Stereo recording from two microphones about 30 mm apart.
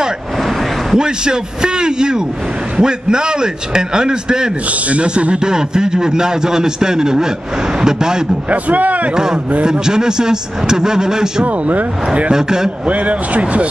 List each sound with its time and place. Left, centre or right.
0.4 s vehicle: centre
0.9 s a man's voice: right
4.6 s speech: right
5.0 s a man's voice: right
8.5 s a man's voice: right
9.1 s a man's voice: right
11.4 s speech: right
12.3 s a man's voice: right
12.8 s speech: right